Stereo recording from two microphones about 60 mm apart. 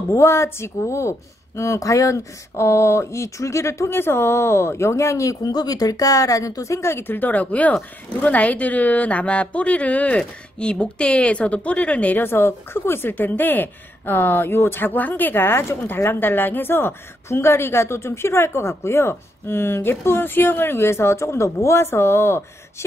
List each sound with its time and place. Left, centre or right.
0.1 s speech: left
6.9 s a woman's voice: left
12.2 s a woman's voice: left